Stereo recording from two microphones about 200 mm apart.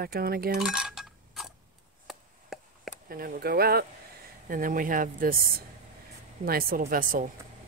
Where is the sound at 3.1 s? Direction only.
45° right (ahead or behind).